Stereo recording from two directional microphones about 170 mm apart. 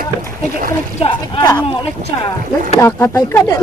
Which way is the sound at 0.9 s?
35° left (ahead or behind).